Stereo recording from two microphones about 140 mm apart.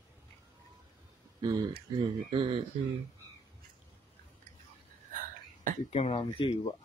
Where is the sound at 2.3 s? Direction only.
35° right (ahead or behind).